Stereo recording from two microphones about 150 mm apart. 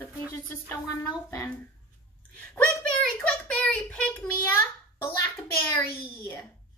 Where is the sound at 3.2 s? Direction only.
10° left (ahead or behind).